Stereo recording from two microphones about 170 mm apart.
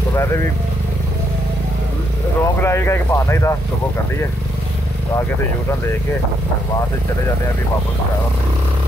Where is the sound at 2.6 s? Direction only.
15° left (ahead or behind).